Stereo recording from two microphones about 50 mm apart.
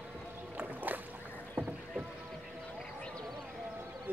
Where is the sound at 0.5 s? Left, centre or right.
Right.